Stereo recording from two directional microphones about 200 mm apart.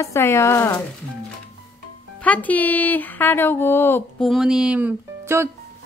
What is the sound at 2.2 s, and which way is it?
A woman's voice, 5° left (ahead or behind).